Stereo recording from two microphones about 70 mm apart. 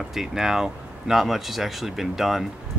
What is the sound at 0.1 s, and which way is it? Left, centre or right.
Speech, centre.